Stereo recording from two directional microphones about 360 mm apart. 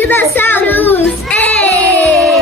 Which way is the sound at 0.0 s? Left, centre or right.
Centre.